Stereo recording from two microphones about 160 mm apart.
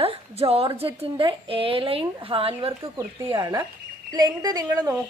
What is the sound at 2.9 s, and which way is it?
A woman's voice, 20° right (ahead or behind).